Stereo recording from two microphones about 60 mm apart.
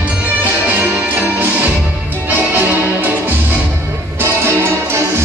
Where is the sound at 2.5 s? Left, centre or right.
Right.